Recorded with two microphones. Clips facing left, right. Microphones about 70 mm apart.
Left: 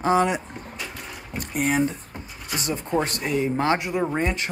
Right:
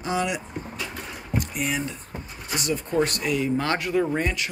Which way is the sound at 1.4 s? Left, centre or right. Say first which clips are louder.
Left 9 dB; left.